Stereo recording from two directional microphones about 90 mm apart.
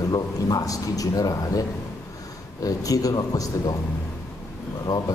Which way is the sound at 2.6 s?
40° left (ahead or behind).